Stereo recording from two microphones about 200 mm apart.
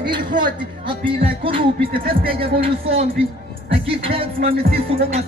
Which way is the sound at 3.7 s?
25° right (ahead or behind).